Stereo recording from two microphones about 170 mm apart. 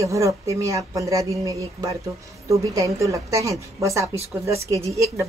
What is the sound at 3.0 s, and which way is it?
A woman's voice, 20° right (ahead or behind).